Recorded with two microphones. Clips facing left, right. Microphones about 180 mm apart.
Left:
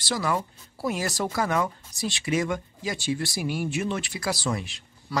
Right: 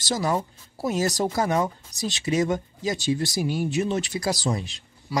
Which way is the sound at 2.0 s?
40° right (ahead or behind).